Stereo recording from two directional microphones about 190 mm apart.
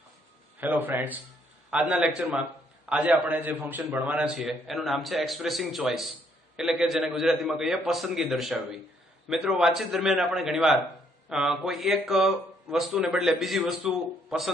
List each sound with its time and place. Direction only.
0.6 s a man's voice: 10° right (ahead or behind)